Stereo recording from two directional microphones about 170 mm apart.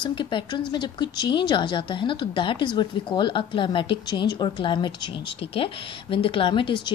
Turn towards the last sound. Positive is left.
turn(degrees=30)  # may be behind; listen again after turning